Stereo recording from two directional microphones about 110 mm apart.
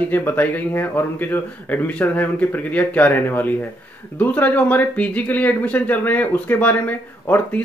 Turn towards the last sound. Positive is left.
turn(degrees=15)  # may be behind; listen again after turning